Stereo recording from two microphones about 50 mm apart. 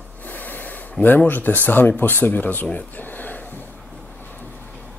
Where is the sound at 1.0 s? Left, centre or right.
Left.